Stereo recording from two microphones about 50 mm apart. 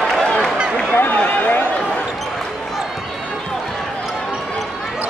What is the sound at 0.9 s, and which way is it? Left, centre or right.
Run, left.